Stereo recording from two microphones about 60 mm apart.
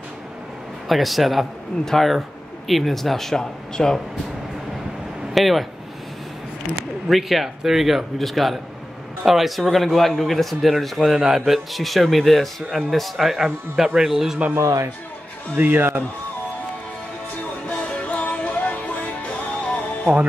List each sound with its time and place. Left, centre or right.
0.8 s speech: centre
5.3 s speech: centre
7.1 s speech: centre
14.6 s speech: right
15.5 s speech: right
17.6 s music: centre